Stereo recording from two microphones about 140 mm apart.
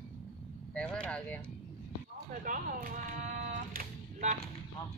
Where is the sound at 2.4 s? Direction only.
80° right.